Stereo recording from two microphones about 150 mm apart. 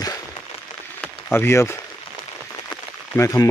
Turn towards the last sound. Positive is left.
turn(degrees=20)  # may be behind; listen again after turning